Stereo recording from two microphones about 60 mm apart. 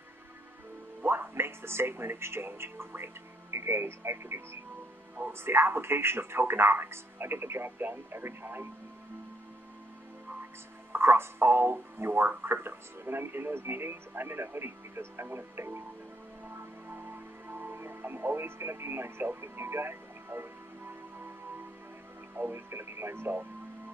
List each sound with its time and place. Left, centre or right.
1.0 s speech: right
10.9 s speech: right
16.4 s music: right
22.3 s speech: right